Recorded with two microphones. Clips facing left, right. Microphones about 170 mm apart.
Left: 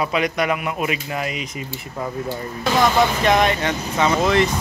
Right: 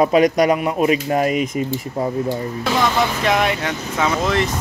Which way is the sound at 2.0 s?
35° right (ahead or behind).